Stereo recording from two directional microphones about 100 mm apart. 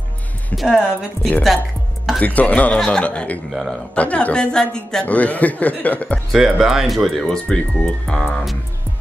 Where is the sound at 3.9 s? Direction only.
15° left (ahead or behind).